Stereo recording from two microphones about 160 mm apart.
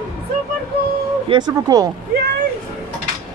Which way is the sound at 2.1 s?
70° right (ahead or behind).